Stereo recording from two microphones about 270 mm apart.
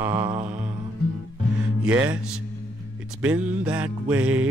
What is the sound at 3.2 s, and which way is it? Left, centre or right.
Music, centre.